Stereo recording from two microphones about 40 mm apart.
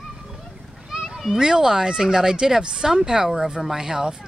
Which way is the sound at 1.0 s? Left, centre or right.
Centre.